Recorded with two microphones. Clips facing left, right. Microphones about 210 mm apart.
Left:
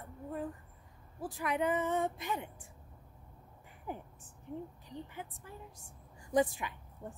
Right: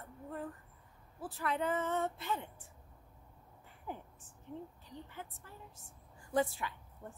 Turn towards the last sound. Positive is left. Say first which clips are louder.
# left 1 dB
turn(degrees=15)  # may be behind; listen again after turning